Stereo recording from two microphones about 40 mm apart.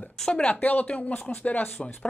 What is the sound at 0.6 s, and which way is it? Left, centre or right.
A woman's voice, left.